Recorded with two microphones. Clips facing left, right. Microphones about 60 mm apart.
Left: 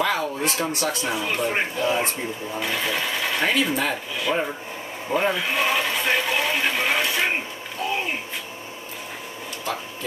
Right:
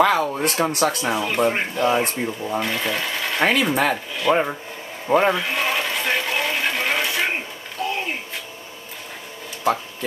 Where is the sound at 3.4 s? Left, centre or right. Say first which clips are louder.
Right 5 dB; right.